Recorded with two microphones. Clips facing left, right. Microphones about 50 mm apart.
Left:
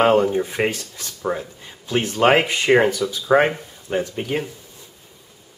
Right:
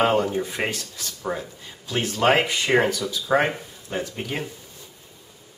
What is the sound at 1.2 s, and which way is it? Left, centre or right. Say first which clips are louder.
Speech: left 4 dB; centre.